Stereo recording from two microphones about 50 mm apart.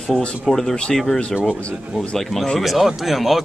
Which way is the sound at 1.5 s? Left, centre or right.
Centre.